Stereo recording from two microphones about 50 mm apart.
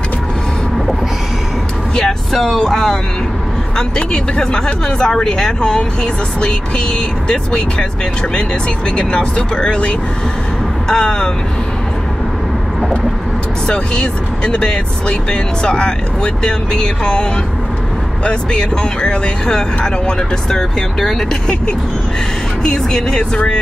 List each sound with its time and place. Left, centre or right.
2.0 s speech: centre
8.9 s speech: centre
13.7 s speech: centre